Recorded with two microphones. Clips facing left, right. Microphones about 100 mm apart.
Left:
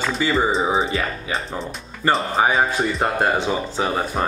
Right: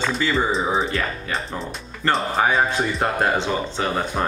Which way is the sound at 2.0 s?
5° left (ahead or behind).